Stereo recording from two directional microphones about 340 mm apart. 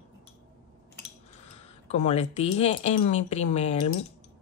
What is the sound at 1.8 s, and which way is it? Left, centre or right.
Speech, centre.